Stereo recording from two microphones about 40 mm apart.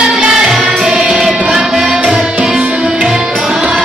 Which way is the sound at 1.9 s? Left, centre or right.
Right.